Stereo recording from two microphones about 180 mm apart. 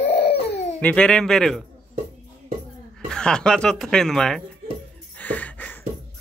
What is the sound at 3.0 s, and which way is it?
Speech, 5° left (ahead or behind).